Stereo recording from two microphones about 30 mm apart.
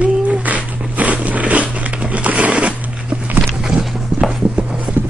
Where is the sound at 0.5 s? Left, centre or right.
Right.